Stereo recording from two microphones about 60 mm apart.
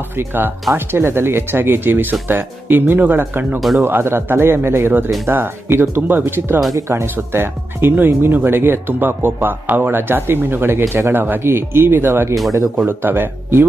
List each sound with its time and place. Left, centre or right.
0.2 s speech: right
3.5 s speech: centre
3.8 s speech: right